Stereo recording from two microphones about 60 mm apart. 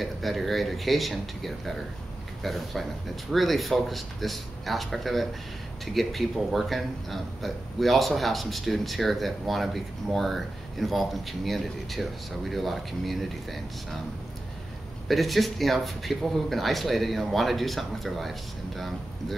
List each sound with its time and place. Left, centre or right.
0.0 s speech: centre
15.0 s speech: centre